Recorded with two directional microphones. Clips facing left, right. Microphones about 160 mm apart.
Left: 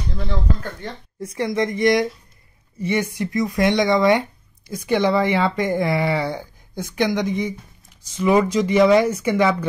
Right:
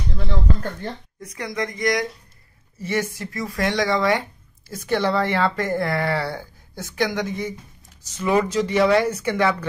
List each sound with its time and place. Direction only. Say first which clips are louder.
1.2 s speech: left 6 dB; 30° left (ahead or behind); by 9.7 s 10° left (ahead or behind)